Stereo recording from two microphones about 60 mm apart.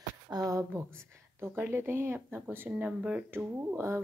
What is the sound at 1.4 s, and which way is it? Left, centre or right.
Speech, right.